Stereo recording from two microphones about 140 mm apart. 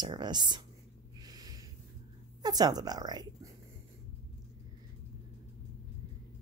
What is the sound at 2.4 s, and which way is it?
Speech, 25° right (ahead or behind).